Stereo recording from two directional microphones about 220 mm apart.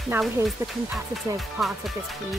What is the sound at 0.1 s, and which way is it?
Speech, 10° right (ahead or behind).